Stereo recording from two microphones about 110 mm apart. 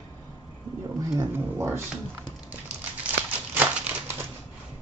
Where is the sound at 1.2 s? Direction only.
20° right (ahead or behind).